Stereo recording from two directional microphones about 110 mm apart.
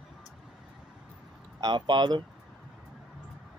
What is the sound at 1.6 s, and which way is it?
Speech, 40° right (ahead or behind).